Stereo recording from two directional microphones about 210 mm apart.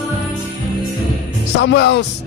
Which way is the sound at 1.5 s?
55° left (ahead or behind).